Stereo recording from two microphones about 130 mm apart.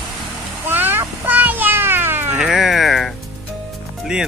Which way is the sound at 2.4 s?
Centre (ahead or behind).